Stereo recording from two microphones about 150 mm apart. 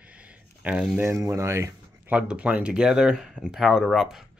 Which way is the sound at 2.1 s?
10° right (ahead or behind).